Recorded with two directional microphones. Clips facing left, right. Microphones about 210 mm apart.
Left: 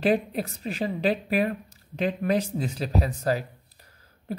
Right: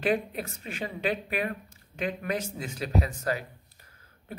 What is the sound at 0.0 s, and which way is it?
A woman's voice, 35° left (ahead or behind).